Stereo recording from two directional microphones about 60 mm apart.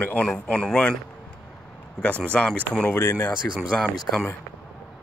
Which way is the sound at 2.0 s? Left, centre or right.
Left.